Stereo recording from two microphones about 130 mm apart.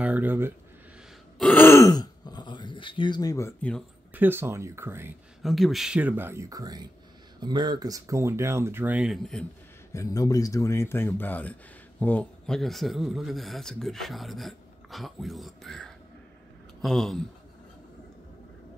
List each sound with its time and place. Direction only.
0.0 s a sound: 15° right (ahead or behind)
1.4 s speech: 15° left (ahead or behind)
4.1 s speech: 15° right (ahead or behind)
5.4 s speech: centre (ahead or behind)
9.9 s speech: 25° left (ahead or behind); by 17.2 s centre (ahead or behind)